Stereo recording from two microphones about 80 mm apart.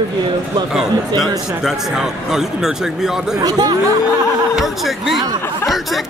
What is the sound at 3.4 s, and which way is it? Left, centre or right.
Speech, right.